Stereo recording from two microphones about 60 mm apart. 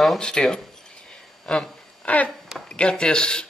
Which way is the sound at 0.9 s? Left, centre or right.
Centre.